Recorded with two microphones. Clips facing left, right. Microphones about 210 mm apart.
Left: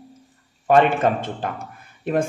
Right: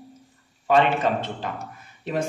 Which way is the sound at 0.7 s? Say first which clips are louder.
Left 3 dB; 50° left (ahead or behind).